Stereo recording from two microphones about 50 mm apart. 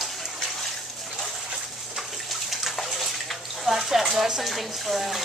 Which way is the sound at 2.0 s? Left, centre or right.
Centre.